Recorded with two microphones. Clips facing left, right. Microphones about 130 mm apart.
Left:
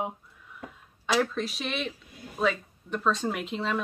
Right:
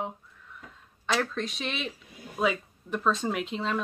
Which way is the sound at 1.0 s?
5° left (ahead or behind).